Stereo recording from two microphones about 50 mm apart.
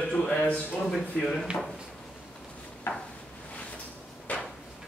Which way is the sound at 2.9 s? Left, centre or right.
Left.